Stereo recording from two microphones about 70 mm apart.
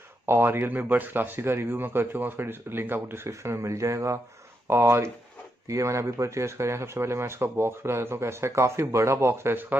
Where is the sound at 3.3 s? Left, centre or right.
Right.